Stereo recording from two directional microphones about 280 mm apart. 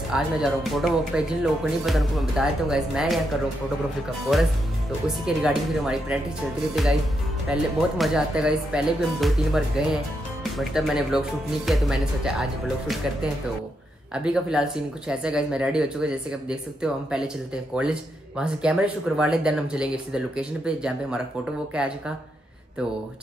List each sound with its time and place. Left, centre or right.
0.1 s speech: centre
4.3 s speech: centre